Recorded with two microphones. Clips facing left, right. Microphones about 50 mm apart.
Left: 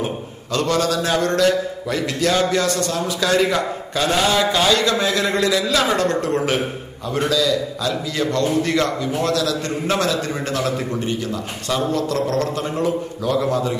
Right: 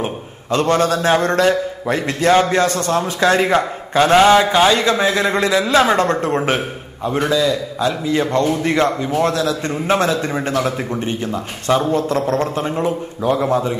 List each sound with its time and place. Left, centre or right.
0.0 s a man's voice: right